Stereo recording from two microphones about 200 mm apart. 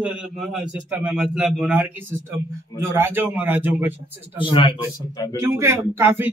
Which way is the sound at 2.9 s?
10° right (ahead or behind).